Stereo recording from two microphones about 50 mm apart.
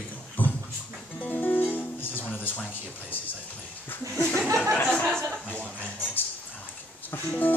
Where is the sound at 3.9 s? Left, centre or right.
Left.